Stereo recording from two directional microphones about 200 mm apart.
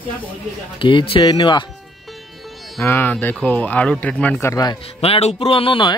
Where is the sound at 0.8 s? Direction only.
25° left (ahead or behind).